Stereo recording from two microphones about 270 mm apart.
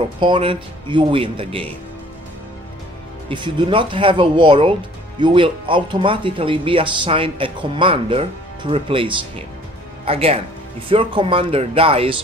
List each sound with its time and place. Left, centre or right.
0.2 s speech: centre
3.3 s speech: centre